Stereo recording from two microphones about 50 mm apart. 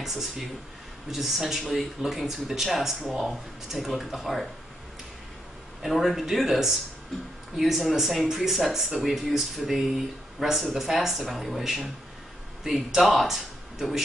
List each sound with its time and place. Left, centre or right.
0.0 s speech: centre
5.8 s speech: centre